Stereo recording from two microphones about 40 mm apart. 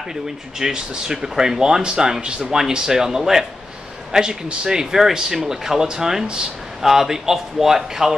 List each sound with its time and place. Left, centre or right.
0.1 s a man's voice: centre
6.8 s speech: centre